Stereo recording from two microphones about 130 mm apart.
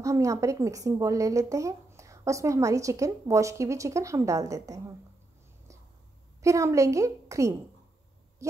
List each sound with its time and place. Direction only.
0.0 s a woman's voice: 25° right (ahead or behind)
6.4 s a woman's voice: 25° right (ahead or behind)
8.4 s a sound: 25° right (ahead or behind)